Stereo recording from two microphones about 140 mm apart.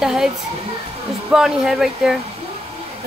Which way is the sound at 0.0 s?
5° right (ahead or behind).